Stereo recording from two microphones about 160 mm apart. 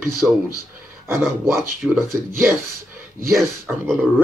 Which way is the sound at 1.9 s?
15° right (ahead or behind).